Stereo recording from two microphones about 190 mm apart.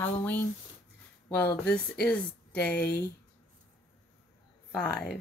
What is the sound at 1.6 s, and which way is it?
Speech, 5° left (ahead or behind).